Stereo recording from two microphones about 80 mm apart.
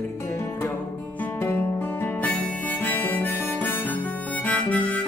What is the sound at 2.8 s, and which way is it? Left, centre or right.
Harmonica, left.